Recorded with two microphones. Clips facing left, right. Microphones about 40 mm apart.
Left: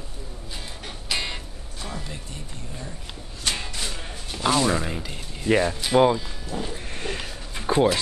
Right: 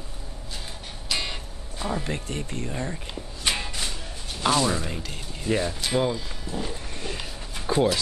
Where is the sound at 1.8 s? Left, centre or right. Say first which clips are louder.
Right 6 dB; centre.